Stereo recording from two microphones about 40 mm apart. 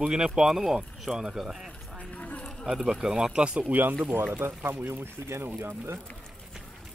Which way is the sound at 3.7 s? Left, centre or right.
Right.